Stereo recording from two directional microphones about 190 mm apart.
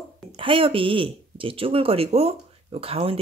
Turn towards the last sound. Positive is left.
turn(degrees=-30)  # may be behind; listen again after turning